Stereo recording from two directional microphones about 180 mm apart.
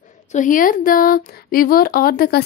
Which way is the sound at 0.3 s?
45° left (ahead or behind).